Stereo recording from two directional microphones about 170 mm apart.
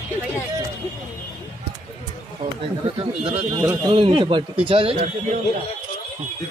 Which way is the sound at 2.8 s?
35° right (ahead or behind).